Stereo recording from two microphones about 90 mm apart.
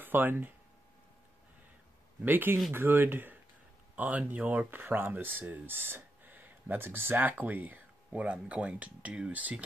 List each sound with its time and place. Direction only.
0.0 s speech: 20° right (ahead or behind)
2.2 s speech: 20° right (ahead or behind)